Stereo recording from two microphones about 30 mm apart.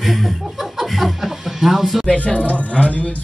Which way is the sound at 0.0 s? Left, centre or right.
Centre.